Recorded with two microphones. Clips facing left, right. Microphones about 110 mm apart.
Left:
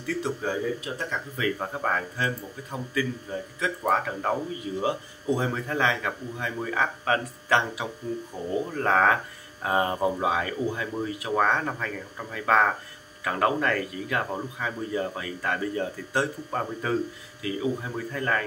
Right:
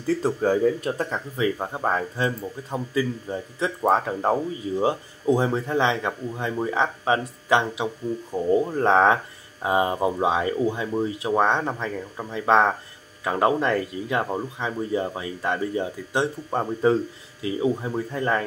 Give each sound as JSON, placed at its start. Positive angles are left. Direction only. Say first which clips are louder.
{"t": 0.0, "sound": "speech", "louder": "right 6 dB", "side_deg": -40}
{"t": 1.3, "sound": "speech", "louder": "right 3 dB", "side_deg": -25}